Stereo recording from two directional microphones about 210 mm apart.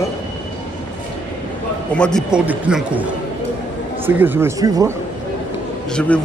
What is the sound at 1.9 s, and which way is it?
Speech, 5° left (ahead or behind).